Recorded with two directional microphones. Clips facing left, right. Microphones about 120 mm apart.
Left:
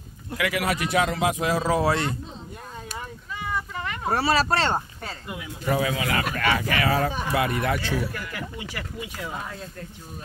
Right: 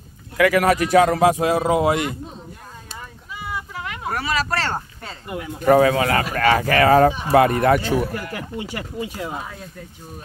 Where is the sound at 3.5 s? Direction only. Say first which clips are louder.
Even; 5° right (ahead or behind).